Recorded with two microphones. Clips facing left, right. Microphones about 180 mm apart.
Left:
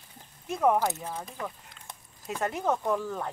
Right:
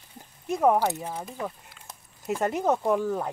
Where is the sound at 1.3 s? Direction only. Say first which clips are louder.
Right 4 dB; 5° right (ahead or behind).